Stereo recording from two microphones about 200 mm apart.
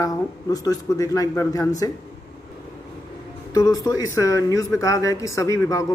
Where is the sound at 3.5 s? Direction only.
15° left (ahead or behind).